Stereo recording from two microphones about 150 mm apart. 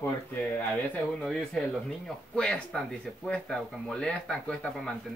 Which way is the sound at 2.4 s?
5° left (ahead or behind).